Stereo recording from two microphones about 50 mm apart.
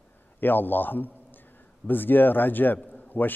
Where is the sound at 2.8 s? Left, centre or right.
Left.